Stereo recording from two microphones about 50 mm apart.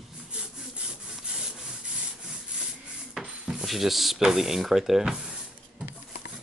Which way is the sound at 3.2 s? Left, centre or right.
Centre.